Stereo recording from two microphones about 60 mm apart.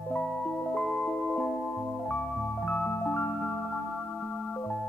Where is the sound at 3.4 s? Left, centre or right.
Left.